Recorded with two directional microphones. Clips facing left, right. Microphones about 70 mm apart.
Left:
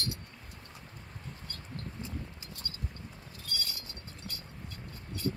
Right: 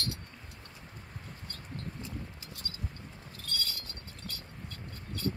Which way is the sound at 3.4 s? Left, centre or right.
Centre.